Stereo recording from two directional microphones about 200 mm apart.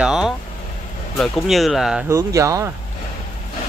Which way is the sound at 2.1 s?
15° right (ahead or behind).